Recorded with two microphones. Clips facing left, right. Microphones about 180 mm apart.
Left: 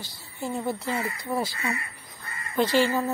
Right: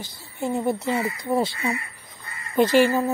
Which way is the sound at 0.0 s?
20° right (ahead or behind).